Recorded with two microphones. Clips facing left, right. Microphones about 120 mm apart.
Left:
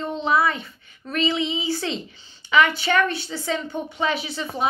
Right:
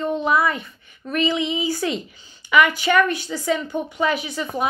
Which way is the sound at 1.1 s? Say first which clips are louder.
Right 2 dB; 30° left (ahead or behind).